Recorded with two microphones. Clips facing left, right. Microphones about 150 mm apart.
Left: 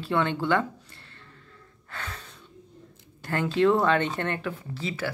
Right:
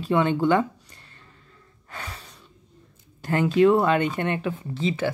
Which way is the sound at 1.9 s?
10° right (ahead or behind).